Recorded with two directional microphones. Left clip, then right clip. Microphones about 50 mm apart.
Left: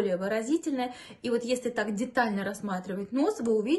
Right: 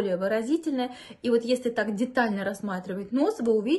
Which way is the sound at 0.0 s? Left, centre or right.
Right.